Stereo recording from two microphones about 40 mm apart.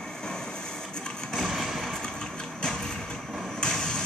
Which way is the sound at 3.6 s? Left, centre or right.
Centre.